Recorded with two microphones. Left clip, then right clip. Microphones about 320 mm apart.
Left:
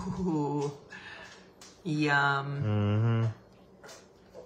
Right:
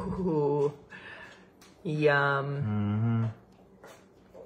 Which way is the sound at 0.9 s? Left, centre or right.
Centre.